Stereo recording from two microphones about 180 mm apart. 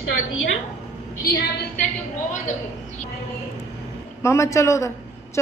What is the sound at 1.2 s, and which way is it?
Speech, 60° left (ahead or behind).